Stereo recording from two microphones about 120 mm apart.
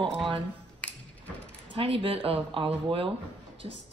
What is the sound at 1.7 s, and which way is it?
Speech, 50° right (ahead or behind).